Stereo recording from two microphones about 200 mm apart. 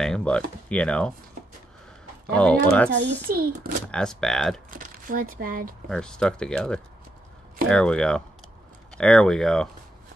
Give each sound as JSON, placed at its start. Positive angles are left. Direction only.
{"t": 0.0, "sound": "speech", "side_deg": 5}
{"t": 2.3, "sound": "speech", "side_deg": 5}
{"t": 3.3, "sound": "a child's voice", "side_deg": -50}
{"t": 3.9, "sound": "speech", "side_deg": 5}
{"t": 4.6, "sound": "speech", "side_deg": -45}
{"t": 5.9, "sound": "speech", "side_deg": 5}